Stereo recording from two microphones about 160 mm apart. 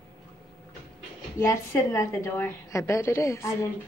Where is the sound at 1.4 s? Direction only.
20° left (ahead or behind).